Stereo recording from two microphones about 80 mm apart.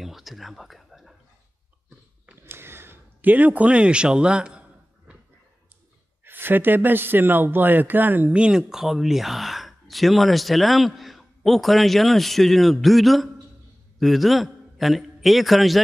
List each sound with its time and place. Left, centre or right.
0.0 s whispering: centre
2.4 s a sound: right; by 5.1 s centre
6.2 s a man's voice: right; by 15.8 s centre